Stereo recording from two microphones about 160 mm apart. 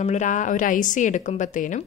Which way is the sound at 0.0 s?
50° left (ahead or behind).